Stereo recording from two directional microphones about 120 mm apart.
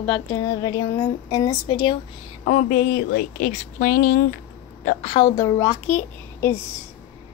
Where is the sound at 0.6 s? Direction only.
35° left (ahead or behind).